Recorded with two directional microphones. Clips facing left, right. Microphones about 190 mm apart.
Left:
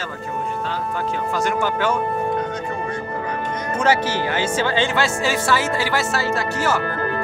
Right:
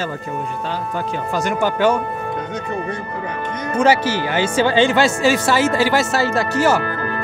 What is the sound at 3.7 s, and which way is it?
Speech, 10° right (ahead or behind).